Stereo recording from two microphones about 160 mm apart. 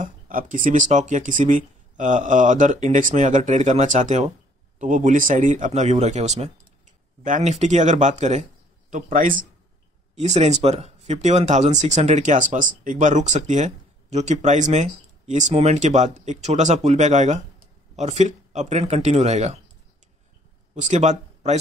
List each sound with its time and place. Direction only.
0.0 s a sound: 55° right (ahead or behind)
0.7 s speech: 50° right (ahead or behind)
8.9 s a man's voice: 60° right (ahead or behind)
10.1 s speech: 45° right (ahead or behind)
20.7 s speech: 50° right (ahead or behind)